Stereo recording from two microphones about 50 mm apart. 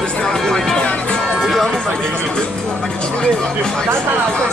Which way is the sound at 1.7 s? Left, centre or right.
Centre.